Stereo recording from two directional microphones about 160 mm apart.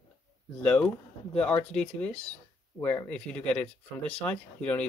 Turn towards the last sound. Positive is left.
turn(degrees=10)  # may be behind; listen again after turning